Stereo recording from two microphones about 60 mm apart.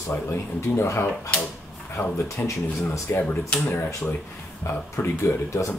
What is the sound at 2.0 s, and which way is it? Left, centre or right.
Speech, left.